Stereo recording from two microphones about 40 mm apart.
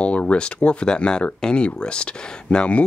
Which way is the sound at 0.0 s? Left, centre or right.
Left.